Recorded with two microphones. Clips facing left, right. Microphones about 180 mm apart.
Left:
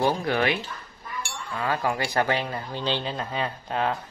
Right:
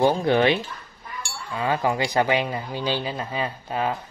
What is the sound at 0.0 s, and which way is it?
Speech, 25° right (ahead or behind).